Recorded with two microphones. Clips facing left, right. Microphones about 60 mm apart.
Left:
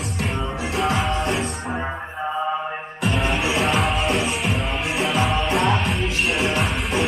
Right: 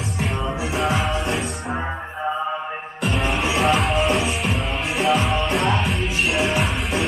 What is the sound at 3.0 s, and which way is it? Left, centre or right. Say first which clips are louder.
Music: even; centre.